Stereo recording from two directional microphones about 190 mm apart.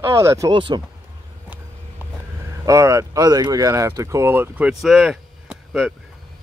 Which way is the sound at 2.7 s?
15° right (ahead or behind).